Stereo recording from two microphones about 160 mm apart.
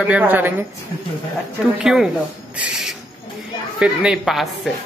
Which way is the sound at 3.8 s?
5° right (ahead or behind).